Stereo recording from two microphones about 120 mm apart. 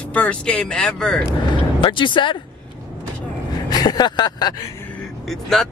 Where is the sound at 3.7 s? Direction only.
35° left (ahead or behind).